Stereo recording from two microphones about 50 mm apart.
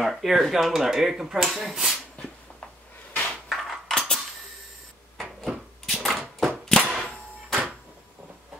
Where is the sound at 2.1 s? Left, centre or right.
Left.